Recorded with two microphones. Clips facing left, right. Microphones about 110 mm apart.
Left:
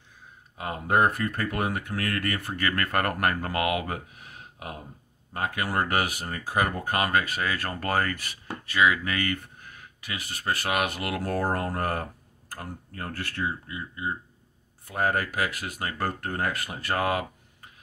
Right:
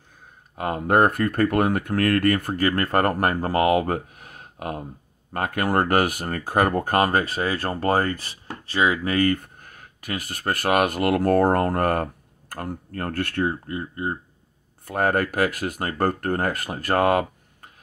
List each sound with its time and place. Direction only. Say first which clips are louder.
0.6 s speech: right 5 dB; 50° right (ahead or behind)
2.6 s speech: right 5 dB; 30° right (ahead or behind); by 17.6 s 45° right (ahead or behind)